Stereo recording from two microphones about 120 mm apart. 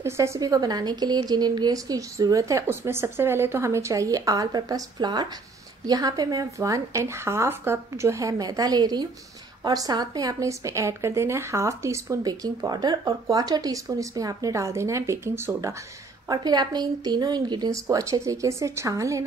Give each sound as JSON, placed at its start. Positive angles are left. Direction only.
{"t": 0.0, "sound": "a woman's voice", "side_deg": -25}
{"t": 16.3, "sound": "a woman's voice", "side_deg": -35}